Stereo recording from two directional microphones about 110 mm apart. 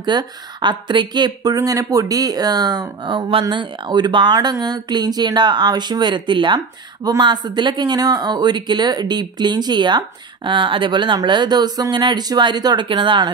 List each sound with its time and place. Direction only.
0.0 s speech: 45° right (ahead or behind)